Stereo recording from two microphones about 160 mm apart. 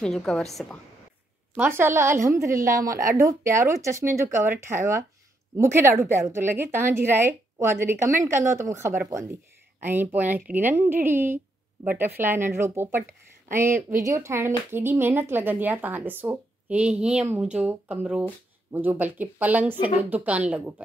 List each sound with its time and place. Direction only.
0.0 s a woman's voice: 5° left (ahead or behind)
1.5 s speech: 10° right (ahead or behind)